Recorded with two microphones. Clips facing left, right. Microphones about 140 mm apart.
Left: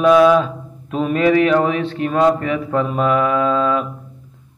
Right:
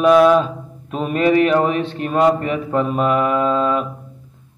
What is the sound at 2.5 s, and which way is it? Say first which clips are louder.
Mantra: even; 5° right (ahead or behind).